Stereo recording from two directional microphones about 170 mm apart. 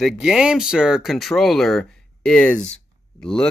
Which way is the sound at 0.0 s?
5° right (ahead or behind).